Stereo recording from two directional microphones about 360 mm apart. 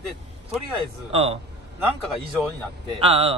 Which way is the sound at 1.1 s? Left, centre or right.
Centre.